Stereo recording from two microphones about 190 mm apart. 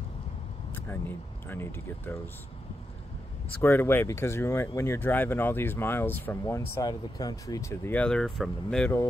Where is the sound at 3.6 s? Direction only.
10° left (ahead or behind).